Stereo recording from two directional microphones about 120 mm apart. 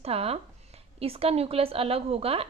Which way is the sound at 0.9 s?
55° right (ahead or behind).